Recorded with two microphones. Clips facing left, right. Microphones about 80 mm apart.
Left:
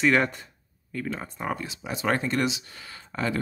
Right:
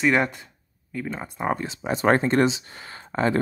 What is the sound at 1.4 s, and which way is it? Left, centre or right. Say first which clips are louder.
Speech: right 8 dB; right.